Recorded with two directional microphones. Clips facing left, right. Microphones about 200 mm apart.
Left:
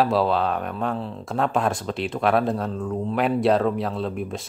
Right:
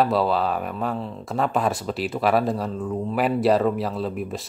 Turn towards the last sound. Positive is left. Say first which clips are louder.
# even
turn(degrees=0)  # may be behind; listen again after turning